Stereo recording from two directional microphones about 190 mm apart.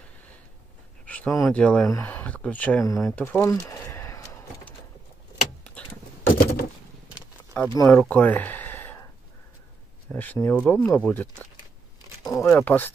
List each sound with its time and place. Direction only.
1.0 s speech: 10° left (ahead or behind)
3.2 s typing: 10° left (ahead or behind)
6.2 s a sound: 50° left (ahead or behind)
7.7 s speech: 15° left (ahead or behind)
8.0 s a sound: 10° left (ahead or behind)
10.0 s speech: 10° left (ahead or behind)
12.3 s speech: 15° left (ahead or behind)